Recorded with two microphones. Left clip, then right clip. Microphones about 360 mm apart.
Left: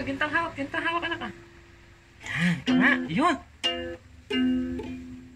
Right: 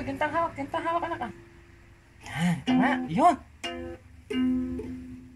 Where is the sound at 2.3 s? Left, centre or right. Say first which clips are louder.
Left 2 dB; right.